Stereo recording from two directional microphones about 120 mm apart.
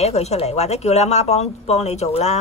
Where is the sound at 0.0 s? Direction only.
65° left (ahead or behind).